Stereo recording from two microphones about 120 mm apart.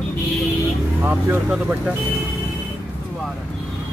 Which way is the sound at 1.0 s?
20° right (ahead or behind).